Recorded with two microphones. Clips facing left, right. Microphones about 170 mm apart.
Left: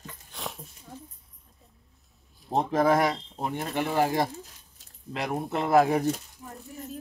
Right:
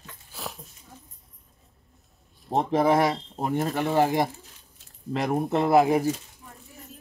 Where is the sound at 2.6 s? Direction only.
25° right (ahead or behind).